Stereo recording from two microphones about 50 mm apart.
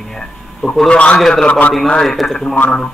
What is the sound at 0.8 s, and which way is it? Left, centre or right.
Speech, left.